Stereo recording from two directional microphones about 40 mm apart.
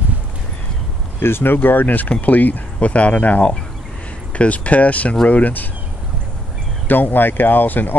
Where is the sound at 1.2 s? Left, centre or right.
Left.